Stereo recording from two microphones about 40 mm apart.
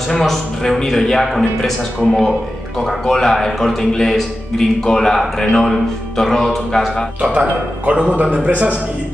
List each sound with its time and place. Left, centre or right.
0.2 s a man's voice: centre
2.8 s a man's voice: centre
7.3 s speech: right